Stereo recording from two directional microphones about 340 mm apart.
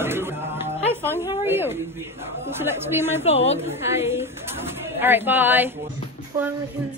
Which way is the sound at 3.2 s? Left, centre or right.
Centre.